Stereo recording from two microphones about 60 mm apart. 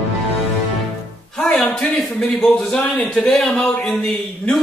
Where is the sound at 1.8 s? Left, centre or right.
Centre.